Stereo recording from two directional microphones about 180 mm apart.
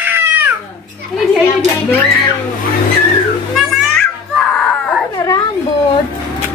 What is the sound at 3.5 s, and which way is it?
Music, centre (ahead or behind).